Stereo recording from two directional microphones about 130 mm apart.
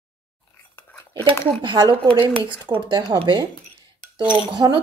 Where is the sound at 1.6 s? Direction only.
35° right (ahead or behind).